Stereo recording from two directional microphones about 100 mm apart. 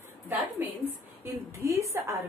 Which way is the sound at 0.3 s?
20° right (ahead or behind).